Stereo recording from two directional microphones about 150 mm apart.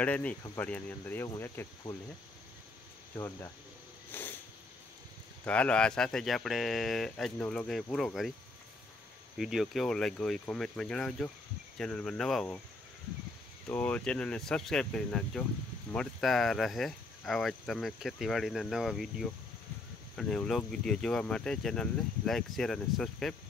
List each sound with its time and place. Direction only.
0.0 s speech: 10° left (ahead or behind)
3.2 s speech: 20° left (ahead or behind)
4.1 s a sound: 15° left (ahead or behind)
5.4 s speech: 10° left (ahead or behind)
9.4 s speech: centre (ahead or behind)
13.7 s speech: 10° left (ahead or behind)